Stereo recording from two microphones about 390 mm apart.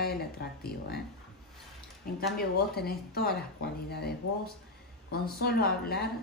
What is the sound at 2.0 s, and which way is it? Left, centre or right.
Speech, left.